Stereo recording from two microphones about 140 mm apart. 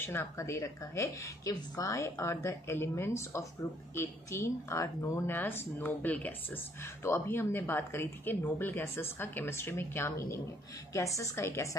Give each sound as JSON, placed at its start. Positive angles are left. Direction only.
{"t": 0.0, "sound": "speech", "side_deg": 15}